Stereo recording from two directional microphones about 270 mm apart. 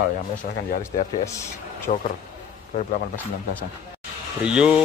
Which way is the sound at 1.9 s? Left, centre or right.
Left.